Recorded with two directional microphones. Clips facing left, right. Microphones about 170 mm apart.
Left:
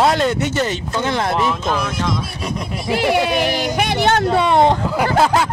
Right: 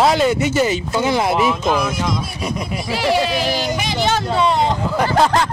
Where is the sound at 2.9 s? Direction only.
55° left (ahead or behind).